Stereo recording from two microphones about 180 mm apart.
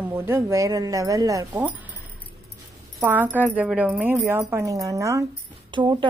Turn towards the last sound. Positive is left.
turn(degrees=-25)  # may be behind; listen again after turning